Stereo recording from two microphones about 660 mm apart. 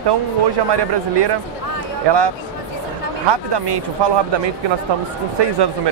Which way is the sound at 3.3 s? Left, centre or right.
Right.